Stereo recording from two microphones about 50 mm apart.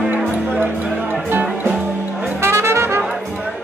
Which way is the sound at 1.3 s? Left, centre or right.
Right.